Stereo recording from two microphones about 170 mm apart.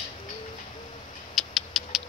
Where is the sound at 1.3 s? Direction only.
Centre (ahead or behind).